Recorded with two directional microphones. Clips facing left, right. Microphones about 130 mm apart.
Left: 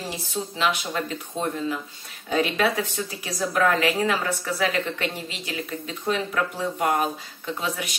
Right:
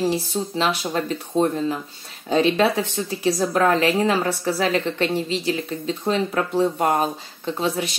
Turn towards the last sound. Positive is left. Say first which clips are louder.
# right 6 dB
turn(degrees=-30)  # may be behind; listen again after turning